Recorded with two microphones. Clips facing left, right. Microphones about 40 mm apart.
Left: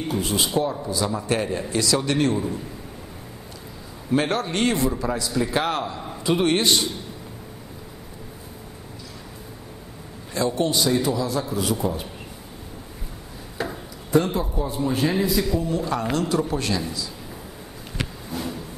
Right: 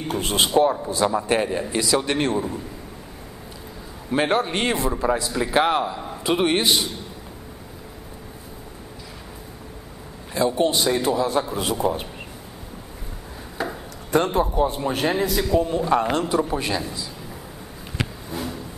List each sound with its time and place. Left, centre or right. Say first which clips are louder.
0.1 s a man's voice: right 4 dB; right
4.1 s a man's voice: right 2 dB; right
10.3 s a man's voice: right 2 dB; centre; by 12.1 s right
13.6 s chop: right 1 dB; centre
14.1 s a man's voice: right 2 dB; right
15.5 s a man's voice: right 5 dB; right
16.3 s a man's voice: right 1 dB; centre